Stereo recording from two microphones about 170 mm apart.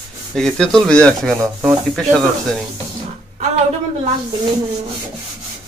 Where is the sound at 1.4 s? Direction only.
20° right (ahead or behind).